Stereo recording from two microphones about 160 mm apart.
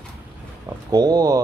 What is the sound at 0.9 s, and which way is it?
Speech, 25° right (ahead or behind).